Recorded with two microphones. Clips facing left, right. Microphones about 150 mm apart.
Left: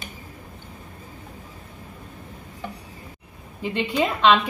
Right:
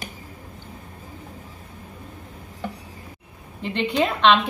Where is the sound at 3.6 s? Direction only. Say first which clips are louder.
Right 1 dB; 5° left (ahead or behind).